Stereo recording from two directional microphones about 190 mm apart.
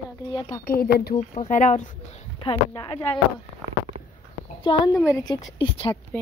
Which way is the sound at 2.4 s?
25° left (ahead or behind).